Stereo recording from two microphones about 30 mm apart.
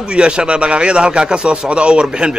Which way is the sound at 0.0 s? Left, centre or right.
Right.